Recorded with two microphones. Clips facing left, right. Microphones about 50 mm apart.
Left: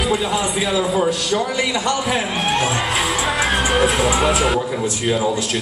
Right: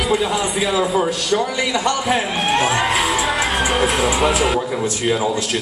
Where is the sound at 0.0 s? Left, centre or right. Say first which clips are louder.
Right 1 dB; centre.